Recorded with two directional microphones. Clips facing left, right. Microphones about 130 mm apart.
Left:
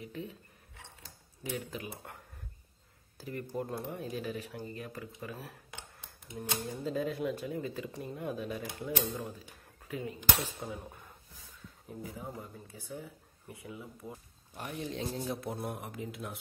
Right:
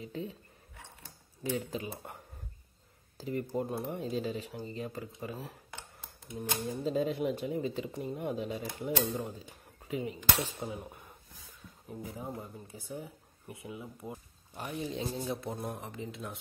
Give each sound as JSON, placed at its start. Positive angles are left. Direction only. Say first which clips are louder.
{"t": 0.0, "sound": "speech", "louder": "right 3 dB", "side_deg": -30}
{"t": 1.7, "sound": "speech", "louder": "right 4 dB", "side_deg": -25}
{"t": 3.2, "sound": "speech", "louder": "right 4 dB", "side_deg": -20}
{"t": 14.5, "sound": "speech", "louder": "right 2 dB", "side_deg": 0}